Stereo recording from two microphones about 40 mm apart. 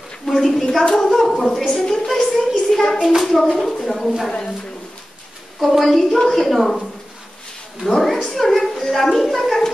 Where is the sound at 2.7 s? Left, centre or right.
Centre.